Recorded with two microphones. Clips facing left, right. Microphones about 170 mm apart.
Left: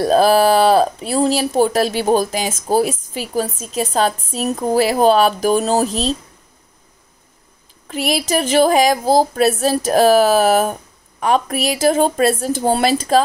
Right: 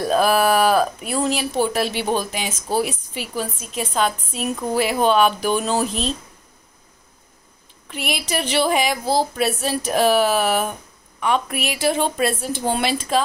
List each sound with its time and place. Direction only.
0.0 s speech: 35° left (ahead or behind)
7.9 s speech: 40° left (ahead or behind)